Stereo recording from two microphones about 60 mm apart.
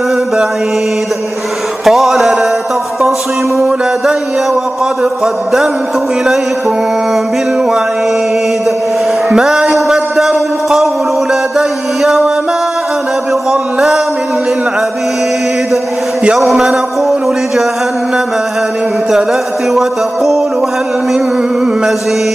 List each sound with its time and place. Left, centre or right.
1.9 s music: centre
5.2 s mantra: centre
9.3 s music: centre
11.5 s mantra: centre
13.5 s a sound: centre
16.3 s mantra: centre